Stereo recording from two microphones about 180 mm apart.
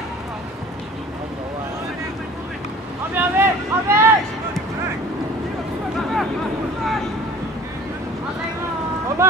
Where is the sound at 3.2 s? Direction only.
15° right (ahead or behind).